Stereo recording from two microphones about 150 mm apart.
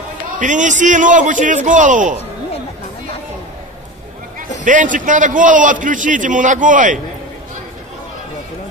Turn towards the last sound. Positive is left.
turn(degrees=-60)  # may be behind; listen again after turning